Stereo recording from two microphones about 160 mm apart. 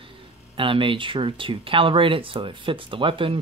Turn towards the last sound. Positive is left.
turn(degrees=-35)  # may be behind; listen again after turning